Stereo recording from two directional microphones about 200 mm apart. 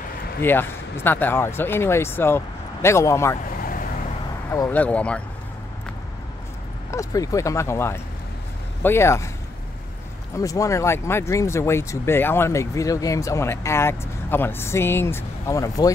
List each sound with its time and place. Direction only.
0.4 s speech: 10° left (ahead or behind)
3.4 s vehicle: 45° left (ahead or behind)
4.5 s speech: 10° left (ahead or behind)
6.9 s speech: 15° left (ahead or behind)
10.3 s speech: 15° left (ahead or behind)